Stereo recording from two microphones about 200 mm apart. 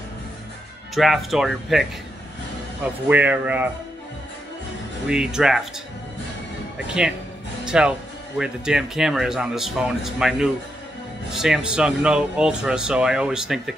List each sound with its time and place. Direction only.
0.9 s speech: centre (ahead or behind)
5.0 s speech: 5° right (ahead or behind)
6.9 s speech: 5° right (ahead or behind)